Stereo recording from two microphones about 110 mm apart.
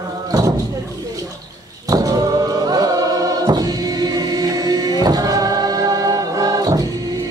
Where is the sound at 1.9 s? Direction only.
35° right (ahead or behind).